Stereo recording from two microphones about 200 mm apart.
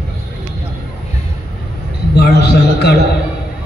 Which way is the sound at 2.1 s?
55° left (ahead or behind).